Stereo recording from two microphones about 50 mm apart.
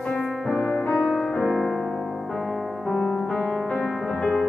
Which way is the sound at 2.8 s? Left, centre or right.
Centre.